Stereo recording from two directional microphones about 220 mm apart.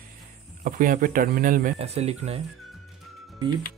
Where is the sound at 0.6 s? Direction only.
35° right (ahead or behind).